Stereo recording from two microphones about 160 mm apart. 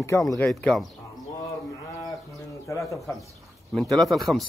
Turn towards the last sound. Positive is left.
turn(degrees=0)  # may be behind; listen again after turning